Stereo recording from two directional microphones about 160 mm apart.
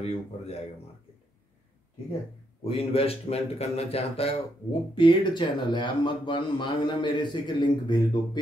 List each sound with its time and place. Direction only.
0.0 s speech: 40° left (ahead or behind)
2.6 s speech: 35° left (ahead or behind)